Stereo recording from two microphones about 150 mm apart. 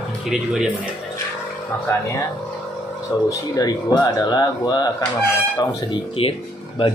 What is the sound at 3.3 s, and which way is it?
Speech, 25° left (ahead or behind).